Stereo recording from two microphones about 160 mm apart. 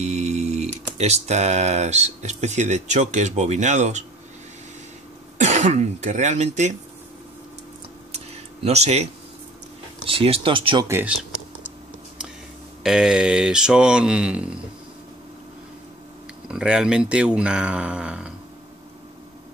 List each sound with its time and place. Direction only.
0.0 s a sound: 40° right (ahead or behind)
0.9 s speech: 40° right (ahead or behind)
5.4 s speech: 45° right (ahead or behind)
8.6 s speech: 40° right (ahead or behind)
10.9 s speech: 15° right (ahead or behind)
12.8 s speech: 5° right (ahead or behind)
16.4 s speech: 5° right (ahead or behind)